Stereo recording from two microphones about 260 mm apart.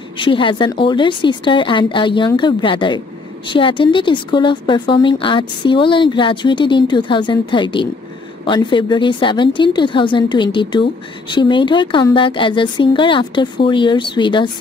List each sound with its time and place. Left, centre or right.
0.2 s a woman's voice: centre